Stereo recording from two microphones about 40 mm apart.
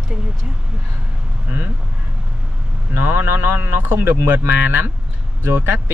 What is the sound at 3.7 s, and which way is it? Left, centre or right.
Speech, right.